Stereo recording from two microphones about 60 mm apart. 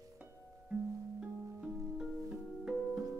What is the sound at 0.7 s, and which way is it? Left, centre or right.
Music, centre.